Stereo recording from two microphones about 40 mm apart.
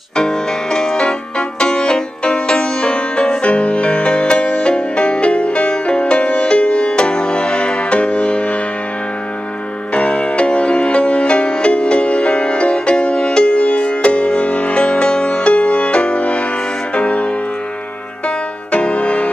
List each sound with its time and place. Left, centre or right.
0.1 s music: centre
9.9 s music: left
18.7 s music: left